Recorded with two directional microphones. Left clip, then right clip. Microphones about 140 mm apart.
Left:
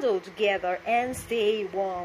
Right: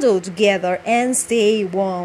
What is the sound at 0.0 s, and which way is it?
A woman's voice, 50° right (ahead or behind).